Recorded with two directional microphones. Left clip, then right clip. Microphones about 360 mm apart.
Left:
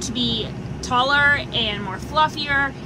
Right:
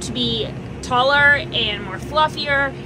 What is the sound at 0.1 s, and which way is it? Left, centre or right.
A woman's voice, centre.